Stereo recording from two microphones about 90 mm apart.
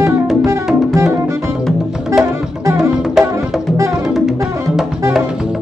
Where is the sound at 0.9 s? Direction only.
35° right (ahead or behind).